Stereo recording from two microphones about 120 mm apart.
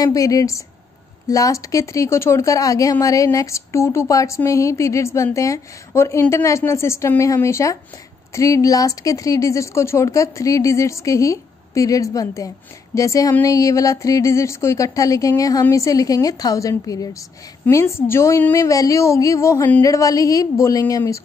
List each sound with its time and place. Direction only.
0.0 s speech: 30° left (ahead or behind)